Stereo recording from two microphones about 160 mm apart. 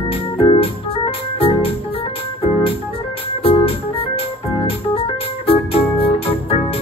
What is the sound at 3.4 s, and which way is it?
Organ, 35° left (ahead or behind).